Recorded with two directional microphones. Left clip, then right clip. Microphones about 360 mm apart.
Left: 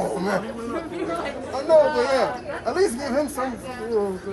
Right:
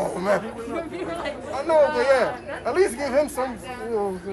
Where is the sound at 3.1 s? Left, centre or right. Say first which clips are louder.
Right 2 dB; right.